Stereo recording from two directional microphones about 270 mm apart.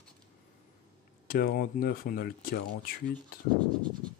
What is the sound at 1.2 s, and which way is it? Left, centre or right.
Speech, left.